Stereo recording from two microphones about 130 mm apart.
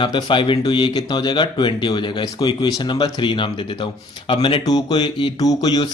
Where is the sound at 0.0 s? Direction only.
40° left (ahead or behind).